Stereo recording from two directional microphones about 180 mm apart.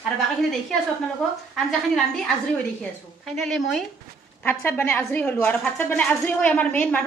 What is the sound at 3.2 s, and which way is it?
Speech, centre (ahead or behind).